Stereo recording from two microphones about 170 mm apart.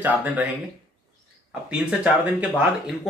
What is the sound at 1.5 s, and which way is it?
Speech, 5° right (ahead or behind).